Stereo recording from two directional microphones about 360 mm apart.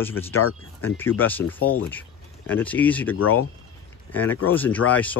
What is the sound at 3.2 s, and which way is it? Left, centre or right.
Speech, left.